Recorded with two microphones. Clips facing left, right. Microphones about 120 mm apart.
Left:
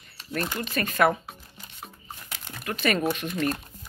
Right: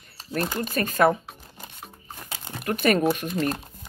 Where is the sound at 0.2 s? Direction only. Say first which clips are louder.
Right 3 dB; 30° right (ahead or behind).